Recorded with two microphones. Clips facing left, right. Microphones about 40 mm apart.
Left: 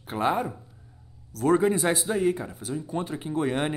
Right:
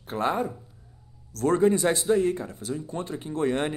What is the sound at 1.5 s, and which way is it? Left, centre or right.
A woman's voice, centre.